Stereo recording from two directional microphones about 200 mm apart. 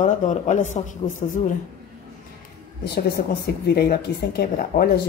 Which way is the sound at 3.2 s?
30° left (ahead or behind).